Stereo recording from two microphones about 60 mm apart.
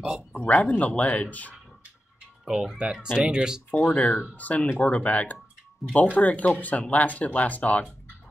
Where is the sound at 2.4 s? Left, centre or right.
Centre.